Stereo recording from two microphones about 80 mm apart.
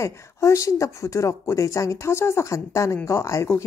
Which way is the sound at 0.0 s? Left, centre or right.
Left.